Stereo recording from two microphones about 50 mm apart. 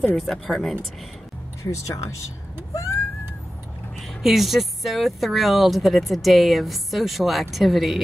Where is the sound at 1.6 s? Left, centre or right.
Left.